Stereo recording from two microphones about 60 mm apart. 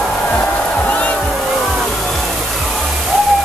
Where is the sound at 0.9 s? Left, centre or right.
Left.